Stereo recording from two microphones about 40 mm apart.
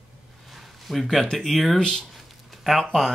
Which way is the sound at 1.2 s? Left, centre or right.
Centre.